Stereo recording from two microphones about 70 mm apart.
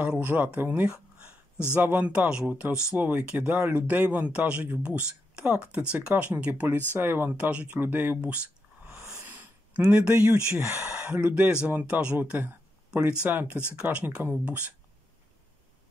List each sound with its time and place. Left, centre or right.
0.0 s speech: right
2.4 s speech: right
9.2 s a sound: right
9.8 s speech: right
11.2 s speech: right